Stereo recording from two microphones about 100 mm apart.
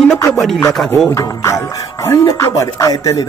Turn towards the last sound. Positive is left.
turn(degrees=35)  # may be behind; listen again after turning